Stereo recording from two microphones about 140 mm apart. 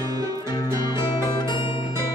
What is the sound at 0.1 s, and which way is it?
Music, 25° right (ahead or behind).